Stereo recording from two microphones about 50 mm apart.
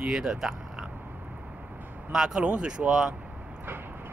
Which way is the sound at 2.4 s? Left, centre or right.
Right.